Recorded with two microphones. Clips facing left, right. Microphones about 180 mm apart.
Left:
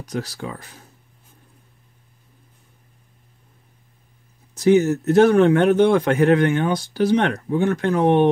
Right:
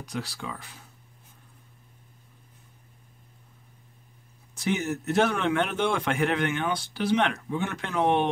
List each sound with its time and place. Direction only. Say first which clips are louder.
0.0 s speech: left 6 dB; 45° left (ahead or behind)
4.6 s speech: left 13 dB; 45° left (ahead or behind)